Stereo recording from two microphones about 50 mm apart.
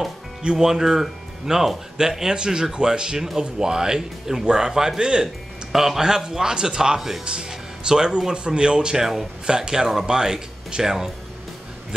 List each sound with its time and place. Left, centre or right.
0.4 s speech: centre
0.7 s speech: centre
7.2 s speech: centre